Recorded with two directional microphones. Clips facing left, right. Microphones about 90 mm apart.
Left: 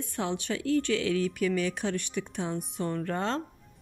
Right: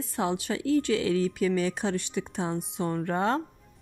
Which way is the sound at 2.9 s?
20° right (ahead or behind).